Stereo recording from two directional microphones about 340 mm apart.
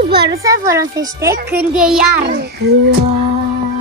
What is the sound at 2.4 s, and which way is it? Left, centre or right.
Speech, right.